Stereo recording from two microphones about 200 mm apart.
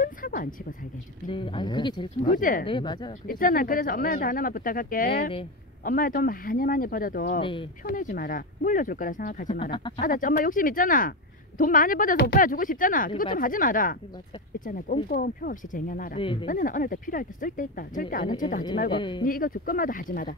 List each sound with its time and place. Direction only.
0.0 s a sound: 45° left (ahead or behind)
1.3 s speech: 25° left (ahead or behind)
2.3 s a woman's voice: 45° left (ahead or behind)
2.6 s speech: 25° left (ahead or behind)
3.3 s a woman's voice: 45° left (ahead or behind)
7.3 s speech: 25° left (ahead or behind)
7.8 s a woman's voice: 45° left (ahead or behind)
15.0 s a woman's voice: 45° left (ahead or behind)
16.2 s speech: 25° left (ahead or behind)
16.4 s a woman's voice: 45° left (ahead or behind)
18.9 s speech: 25° left (ahead or behind)
19.2 s a woman's voice: 45° left (ahead or behind)